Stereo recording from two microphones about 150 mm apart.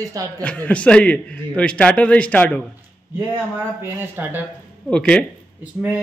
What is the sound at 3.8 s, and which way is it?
Speech, 15° right (ahead or behind).